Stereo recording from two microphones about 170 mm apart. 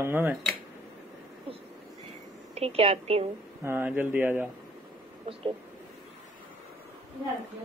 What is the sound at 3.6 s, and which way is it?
Speech, 10° right (ahead or behind).